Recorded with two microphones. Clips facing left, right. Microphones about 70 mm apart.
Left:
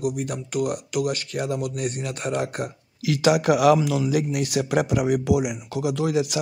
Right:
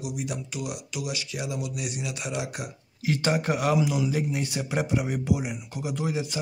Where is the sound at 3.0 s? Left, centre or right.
Left.